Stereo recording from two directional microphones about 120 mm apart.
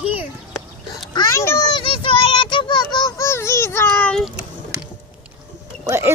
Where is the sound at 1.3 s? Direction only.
25° left (ahead or behind).